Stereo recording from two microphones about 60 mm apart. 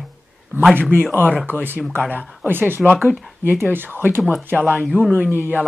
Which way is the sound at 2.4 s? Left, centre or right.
Right.